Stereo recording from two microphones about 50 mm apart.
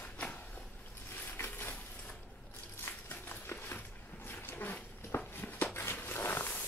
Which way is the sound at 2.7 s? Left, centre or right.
Left.